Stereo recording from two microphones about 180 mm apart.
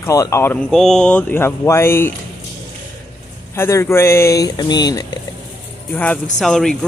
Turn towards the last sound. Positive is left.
turn(degrees=5)  # may be behind; listen again after turning